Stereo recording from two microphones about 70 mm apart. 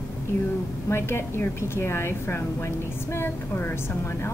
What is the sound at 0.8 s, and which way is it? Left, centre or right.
A woman's voice, left.